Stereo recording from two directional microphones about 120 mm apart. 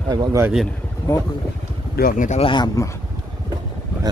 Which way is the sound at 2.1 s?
90° left.